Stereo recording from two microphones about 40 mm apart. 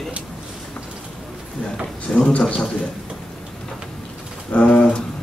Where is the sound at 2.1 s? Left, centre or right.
Left.